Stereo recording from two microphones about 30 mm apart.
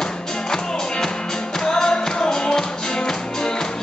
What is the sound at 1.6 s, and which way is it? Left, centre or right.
Music, left.